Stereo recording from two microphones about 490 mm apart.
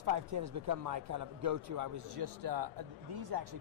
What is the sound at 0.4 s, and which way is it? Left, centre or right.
A man's voice, right.